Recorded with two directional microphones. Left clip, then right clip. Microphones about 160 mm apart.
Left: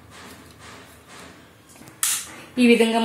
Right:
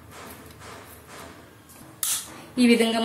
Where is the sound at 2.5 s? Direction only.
25° left (ahead or behind).